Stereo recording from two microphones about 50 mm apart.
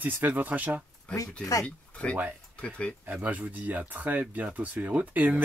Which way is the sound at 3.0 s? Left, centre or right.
Right.